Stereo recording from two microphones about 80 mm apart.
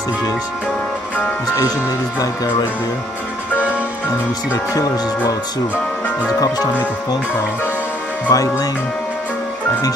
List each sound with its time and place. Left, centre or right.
2.1 s speech: left
8.3 s speech: left